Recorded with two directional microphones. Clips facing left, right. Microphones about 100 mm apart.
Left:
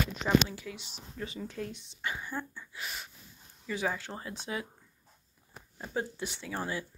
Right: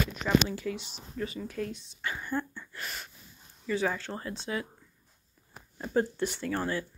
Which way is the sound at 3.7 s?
15° left (ahead or behind).